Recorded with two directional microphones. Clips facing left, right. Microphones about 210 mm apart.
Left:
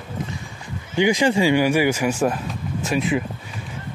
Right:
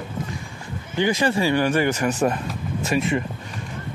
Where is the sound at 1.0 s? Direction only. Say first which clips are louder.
Left 3 dB; 15° left (ahead or behind).